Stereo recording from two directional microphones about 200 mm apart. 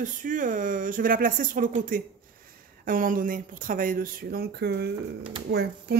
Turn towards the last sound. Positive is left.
turn(degrees=-55)  # may be behind; listen again after turning